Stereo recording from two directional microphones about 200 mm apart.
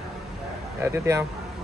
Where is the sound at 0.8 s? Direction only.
15° right (ahead or behind).